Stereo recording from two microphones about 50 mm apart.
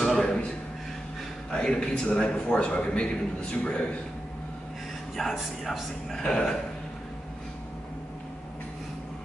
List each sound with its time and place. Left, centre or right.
0.2 s a sound: centre
1.5 s a man's voice: centre
5.2 s speech: centre
6.2 s a man's voice: centre